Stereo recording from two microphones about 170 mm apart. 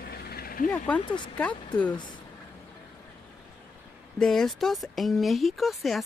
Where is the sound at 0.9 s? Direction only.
5° left (ahead or behind).